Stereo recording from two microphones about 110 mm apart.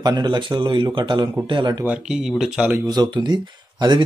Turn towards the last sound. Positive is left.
turn(degrees=-40)  # may be behind; listen again after turning